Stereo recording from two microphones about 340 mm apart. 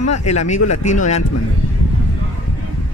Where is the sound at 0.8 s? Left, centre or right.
Left.